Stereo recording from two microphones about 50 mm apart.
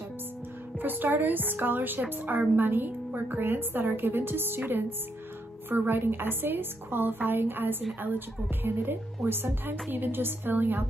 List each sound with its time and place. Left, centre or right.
0.7 s a woman's voice: right
5.7 s a woman's voice: right